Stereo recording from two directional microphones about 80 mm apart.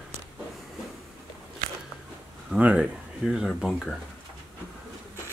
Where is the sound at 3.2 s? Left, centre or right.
Centre.